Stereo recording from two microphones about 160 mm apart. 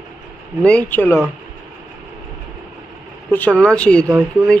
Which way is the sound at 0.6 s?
10° left (ahead or behind).